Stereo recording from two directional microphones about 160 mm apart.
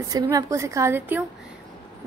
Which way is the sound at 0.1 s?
20° right (ahead or behind).